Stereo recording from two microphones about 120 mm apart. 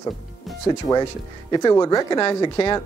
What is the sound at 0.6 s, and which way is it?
Speech, 35° left (ahead or behind).